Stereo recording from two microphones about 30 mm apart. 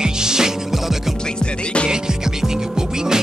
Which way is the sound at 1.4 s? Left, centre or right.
Left.